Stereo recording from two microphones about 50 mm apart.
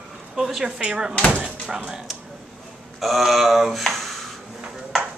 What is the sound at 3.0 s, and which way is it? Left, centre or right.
Speech, centre.